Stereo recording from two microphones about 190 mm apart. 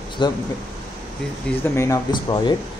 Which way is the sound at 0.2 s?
25° left (ahead or behind).